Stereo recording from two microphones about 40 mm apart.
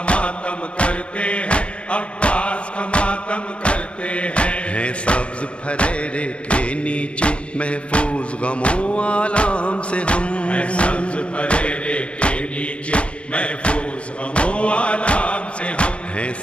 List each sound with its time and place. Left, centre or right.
0.0 s music: left